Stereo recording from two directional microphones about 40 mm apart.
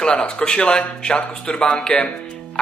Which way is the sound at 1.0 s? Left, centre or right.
Centre.